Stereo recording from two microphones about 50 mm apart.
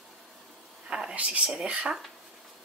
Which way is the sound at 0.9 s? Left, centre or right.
Centre.